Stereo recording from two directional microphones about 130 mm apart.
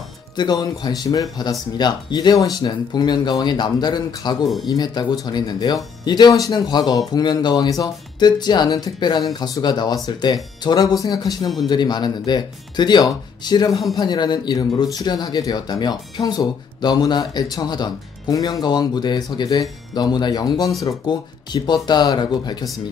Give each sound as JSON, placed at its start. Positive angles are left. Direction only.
{"t": 0.4, "sound": "speech", "side_deg": 30}